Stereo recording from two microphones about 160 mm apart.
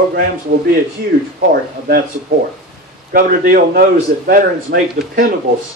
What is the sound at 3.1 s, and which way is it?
A man's voice, 65° right (ahead or behind).